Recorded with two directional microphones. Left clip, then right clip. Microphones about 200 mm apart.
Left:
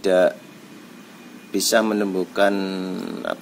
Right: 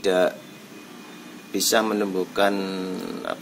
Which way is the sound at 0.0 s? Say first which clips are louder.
Left 3 dB; 50° left (ahead or behind).